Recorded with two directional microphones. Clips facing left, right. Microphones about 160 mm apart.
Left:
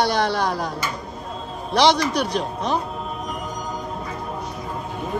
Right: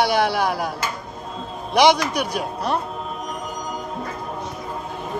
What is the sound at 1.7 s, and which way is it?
A man's voice, 10° right (ahead or behind).